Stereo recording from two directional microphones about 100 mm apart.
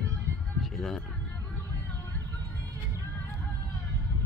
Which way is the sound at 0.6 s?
Centre (ahead or behind).